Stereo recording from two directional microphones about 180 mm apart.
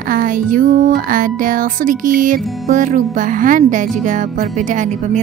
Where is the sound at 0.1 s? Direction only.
50° right (ahead or behind).